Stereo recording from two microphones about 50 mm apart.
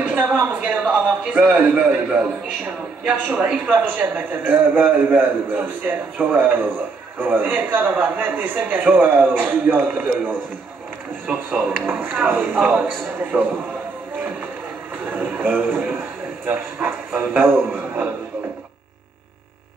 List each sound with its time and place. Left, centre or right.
0.0 s a sound: right
0.4 s a man's voice: right
3.6 s a man's voice: right
11.7 s a man's voice: right
15.0 s a sound: right
17.7 s a man's voice: right